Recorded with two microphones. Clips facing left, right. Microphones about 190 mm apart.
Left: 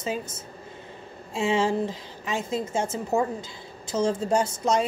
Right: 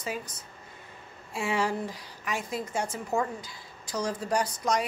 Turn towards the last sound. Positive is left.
turn(degrees=25)  # may be behind; listen again after turning